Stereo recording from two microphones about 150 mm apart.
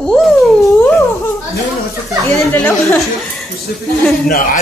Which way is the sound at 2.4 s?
10° left (ahead or behind).